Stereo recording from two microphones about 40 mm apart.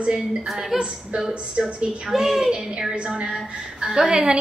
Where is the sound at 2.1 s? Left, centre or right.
Centre; by 4.3 s right.